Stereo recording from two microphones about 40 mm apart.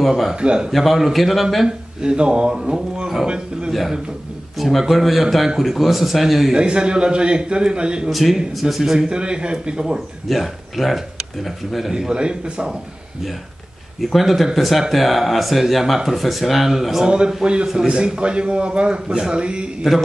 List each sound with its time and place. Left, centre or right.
0.0 s speech: centre
0.3 s a man's voice: right
0.7 s speech: centre
1.7 s a man's voice: right
4.6 s speech: centre
6.5 s a man's voice: right
8.1 s speech: centre
8.9 s a man's voice: right
9.9 s speech: centre
11.9 s a man's voice: right
14.1 s speech: centre
17.3 s a man's voice: right
19.1 s speech: centre
19.4 s a man's voice: right